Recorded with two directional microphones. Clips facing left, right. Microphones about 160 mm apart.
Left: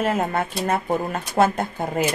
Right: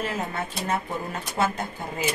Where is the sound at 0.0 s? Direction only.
55° left (ahead or behind).